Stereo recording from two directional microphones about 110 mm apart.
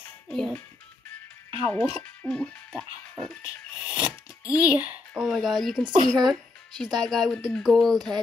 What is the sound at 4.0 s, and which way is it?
Speech, 35° left (ahead or behind).